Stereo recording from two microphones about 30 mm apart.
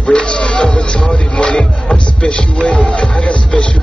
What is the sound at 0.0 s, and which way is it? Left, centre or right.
Music, left.